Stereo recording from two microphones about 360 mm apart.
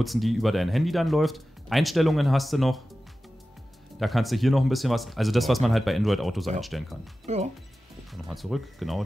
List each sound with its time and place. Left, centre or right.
0.0 s speech: centre
4.0 s speech: centre
7.3 s speech: centre
8.1 s speech: centre